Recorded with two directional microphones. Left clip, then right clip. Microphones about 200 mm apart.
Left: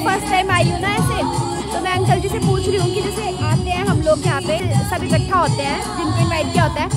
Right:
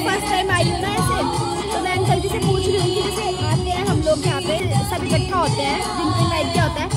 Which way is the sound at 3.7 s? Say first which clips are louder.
Left 3 dB; 30° left (ahead or behind).